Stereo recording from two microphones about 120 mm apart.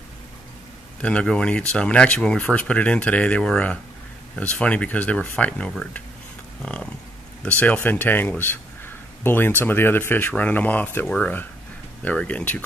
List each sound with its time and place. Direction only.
1.0 s speech: 10° left (ahead or behind)